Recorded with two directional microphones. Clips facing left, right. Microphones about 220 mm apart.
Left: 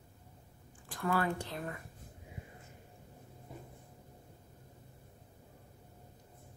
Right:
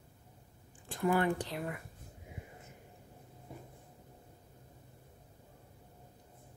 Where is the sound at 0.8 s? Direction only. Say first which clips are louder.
Right 3 dB; 25° right (ahead or behind).